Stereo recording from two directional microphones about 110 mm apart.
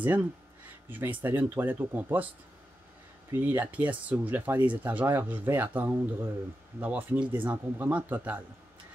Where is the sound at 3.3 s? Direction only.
20° right (ahead or behind).